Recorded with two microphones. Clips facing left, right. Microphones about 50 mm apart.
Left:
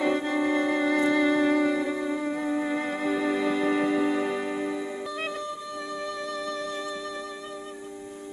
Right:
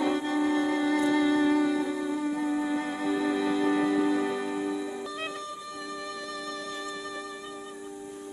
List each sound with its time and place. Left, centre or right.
0.0 s music: left